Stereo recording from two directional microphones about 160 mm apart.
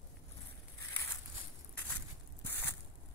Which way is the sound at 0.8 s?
15° left (ahead or behind).